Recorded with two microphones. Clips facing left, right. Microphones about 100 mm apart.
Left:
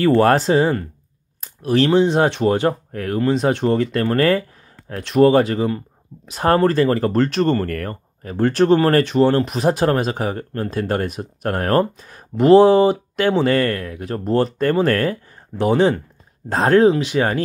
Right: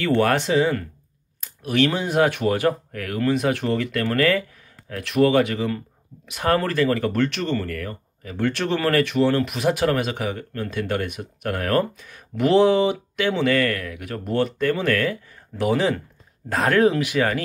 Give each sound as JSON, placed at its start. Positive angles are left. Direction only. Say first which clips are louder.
{"t": 0.0, "sound": "speech", "louder": "left 6 dB", "side_deg": 35}